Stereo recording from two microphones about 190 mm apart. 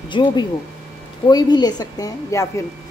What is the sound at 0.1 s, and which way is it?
A woman's voice, 25° left (ahead or behind).